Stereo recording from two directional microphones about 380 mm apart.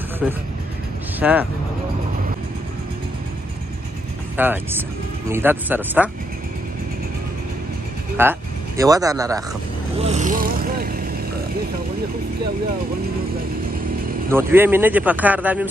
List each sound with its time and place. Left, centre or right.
0.2 s speech: centre
4.4 s speech: centre
8.2 s speech: centre
9.9 s vehicle: centre
14.3 s speech: centre